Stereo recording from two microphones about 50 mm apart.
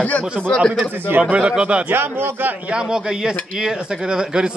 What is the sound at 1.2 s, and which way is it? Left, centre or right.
Speech, right.